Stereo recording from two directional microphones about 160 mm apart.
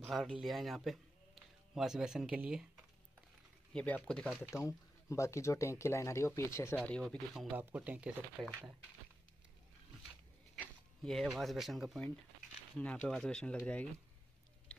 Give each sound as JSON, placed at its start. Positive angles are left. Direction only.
{"t": 0.0, "sound": "a man's voice", "side_deg": -5}
{"t": 3.7, "sound": "speech", "side_deg": 10}
{"t": 4.4, "sound": "speech", "side_deg": 20}
{"t": 6.8, "sound": "speech", "side_deg": 5}
{"t": 7.5, "sound": "speech", "side_deg": -10}
{"t": 10.6, "sound": "speech", "side_deg": 0}